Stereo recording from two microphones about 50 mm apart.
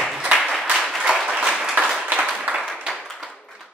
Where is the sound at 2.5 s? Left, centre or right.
Right.